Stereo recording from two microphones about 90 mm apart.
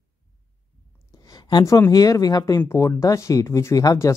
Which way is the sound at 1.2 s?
45° left (ahead or behind).